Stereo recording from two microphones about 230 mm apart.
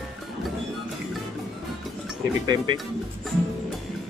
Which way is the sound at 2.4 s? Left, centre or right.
Centre.